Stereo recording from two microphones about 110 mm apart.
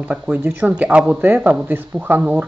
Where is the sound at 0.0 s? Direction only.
15° right (ahead or behind).